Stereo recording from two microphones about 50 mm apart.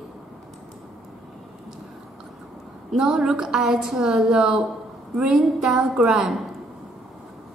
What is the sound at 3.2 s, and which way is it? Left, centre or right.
A woman's voice, centre.